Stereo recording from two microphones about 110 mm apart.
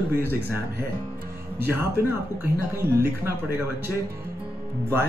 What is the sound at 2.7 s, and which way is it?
Speech, 20° right (ahead or behind).